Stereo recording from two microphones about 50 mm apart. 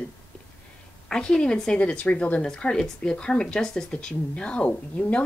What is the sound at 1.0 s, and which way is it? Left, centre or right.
A woman's voice, centre.